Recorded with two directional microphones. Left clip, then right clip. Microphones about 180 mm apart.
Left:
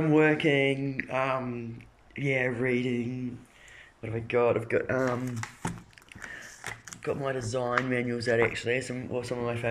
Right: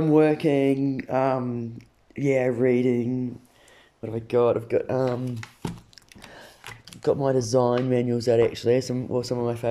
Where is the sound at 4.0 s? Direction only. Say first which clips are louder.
Right 4 dB; 25° right (ahead or behind).